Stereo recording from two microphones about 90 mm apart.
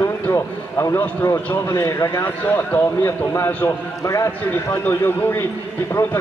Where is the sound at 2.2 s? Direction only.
20° left (ahead or behind).